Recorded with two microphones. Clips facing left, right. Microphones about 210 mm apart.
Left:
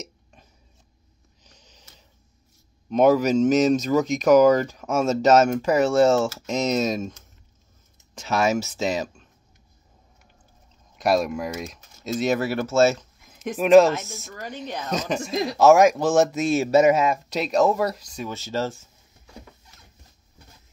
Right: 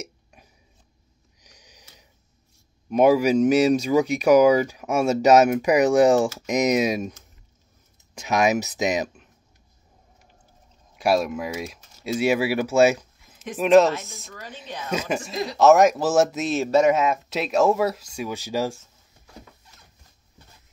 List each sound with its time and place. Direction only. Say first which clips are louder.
0.0 s hiccup: right 1 dB; 10° right (ahead or behind)
1.4 s sniff: right 1 dB; 10° right (ahead or behind)
2.9 s speech: right 1 dB; 10° right (ahead or behind)
11.0 s speech: even; 5° right (ahead or behind)
13.6 s speech: left 2 dB; centre (ahead or behind)